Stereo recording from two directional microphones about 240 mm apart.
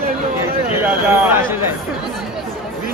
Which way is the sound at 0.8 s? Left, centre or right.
Centre.